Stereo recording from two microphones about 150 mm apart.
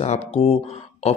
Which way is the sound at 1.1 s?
45° left (ahead or behind).